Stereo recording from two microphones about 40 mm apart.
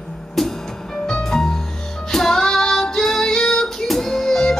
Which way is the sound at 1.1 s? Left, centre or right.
Centre.